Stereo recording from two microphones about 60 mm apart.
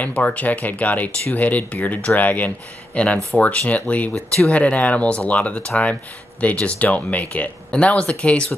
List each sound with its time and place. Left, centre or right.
0.0 s speech: left